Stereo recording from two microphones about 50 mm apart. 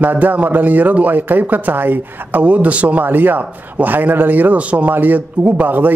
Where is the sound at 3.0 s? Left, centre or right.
Right.